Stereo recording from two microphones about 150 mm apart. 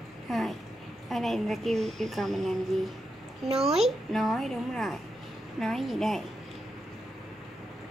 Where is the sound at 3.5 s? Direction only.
45° right (ahead or behind).